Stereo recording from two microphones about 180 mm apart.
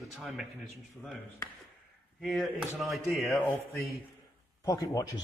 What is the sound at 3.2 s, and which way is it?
Speech, 10° left (ahead or behind).